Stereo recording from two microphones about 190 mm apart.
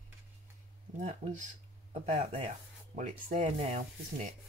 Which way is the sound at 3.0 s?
40° right (ahead or behind).